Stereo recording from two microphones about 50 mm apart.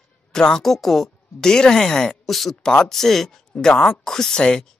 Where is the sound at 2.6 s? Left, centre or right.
Centre.